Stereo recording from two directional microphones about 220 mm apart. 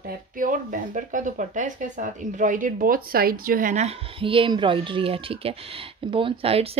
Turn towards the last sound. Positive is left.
turn(degrees=-25)  # may be behind; listen again after turning